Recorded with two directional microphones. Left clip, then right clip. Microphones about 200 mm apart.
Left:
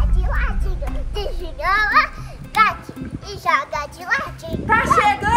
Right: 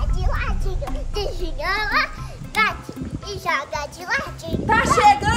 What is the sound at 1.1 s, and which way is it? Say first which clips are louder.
Speech: right 1 dB; 5° right (ahead or behind).